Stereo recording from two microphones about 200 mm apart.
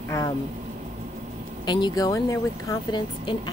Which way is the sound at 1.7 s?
20° left (ahead or behind).